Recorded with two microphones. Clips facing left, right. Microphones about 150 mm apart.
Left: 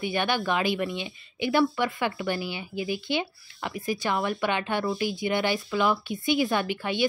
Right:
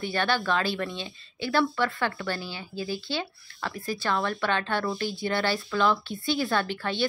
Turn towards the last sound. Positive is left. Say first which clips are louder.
# left 1 dB
turn(degrees=15)  # may be behind; listen again after turning